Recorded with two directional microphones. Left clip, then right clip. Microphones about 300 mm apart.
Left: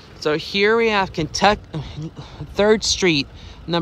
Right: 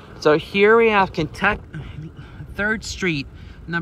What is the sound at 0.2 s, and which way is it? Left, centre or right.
Speech, centre.